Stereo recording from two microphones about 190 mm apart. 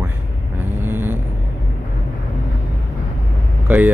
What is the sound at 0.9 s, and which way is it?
Vehicle, 10° right (ahead or behind).